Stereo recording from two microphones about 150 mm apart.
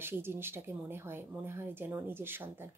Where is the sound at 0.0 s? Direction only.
15° right (ahead or behind).